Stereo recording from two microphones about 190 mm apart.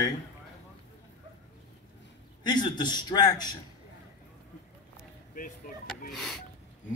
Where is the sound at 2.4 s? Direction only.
25° left (ahead or behind).